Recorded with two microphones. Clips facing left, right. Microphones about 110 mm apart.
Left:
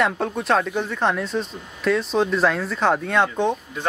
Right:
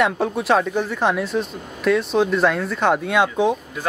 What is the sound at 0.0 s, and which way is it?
Speech, centre (ahead or behind).